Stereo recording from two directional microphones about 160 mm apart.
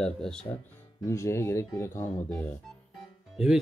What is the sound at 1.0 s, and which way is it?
Speech, 15° left (ahead or behind).